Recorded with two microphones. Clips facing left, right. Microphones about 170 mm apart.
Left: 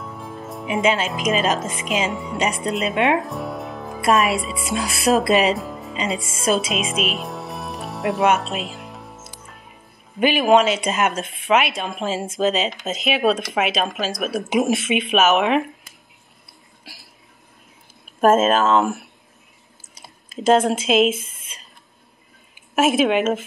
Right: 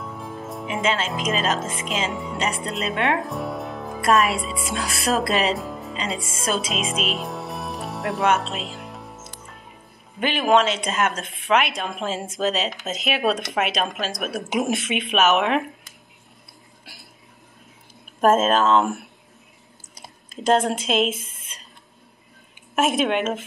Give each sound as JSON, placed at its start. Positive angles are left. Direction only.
{"t": 0.0, "sound": "music", "side_deg": 0}
{"t": 0.8, "sound": "speech", "side_deg": 10}
{"t": 2.6, "sound": "speech", "side_deg": 15}
{"t": 3.2, "sound": "music", "side_deg": 0}
{"t": 4.1, "sound": "speech", "side_deg": 15}
{"t": 4.6, "sound": "speech", "side_deg": 15}
{"t": 5.6, "sound": "music", "side_deg": 0}
{"t": 5.9, "sound": "speech", "side_deg": 5}
{"t": 8.4, "sound": "music", "side_deg": 0}
{"t": 10.2, "sound": "speech", "side_deg": 10}
{"t": 11.5, "sound": "speech", "side_deg": 0}
{"t": 18.2, "sound": "speech", "side_deg": 5}
{"t": 20.2, "sound": "speech", "side_deg": 5}
{"t": 22.8, "sound": "speech", "side_deg": 5}